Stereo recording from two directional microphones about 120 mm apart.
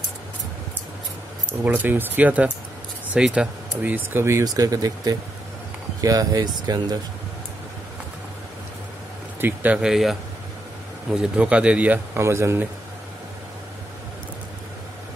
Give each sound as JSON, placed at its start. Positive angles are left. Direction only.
{"t": 1.6, "sound": "speech", "side_deg": -15}
{"t": 9.4, "sound": "speech", "side_deg": -15}
{"t": 9.8, "sound": "speech", "side_deg": -5}
{"t": 11.1, "sound": "speech", "side_deg": -10}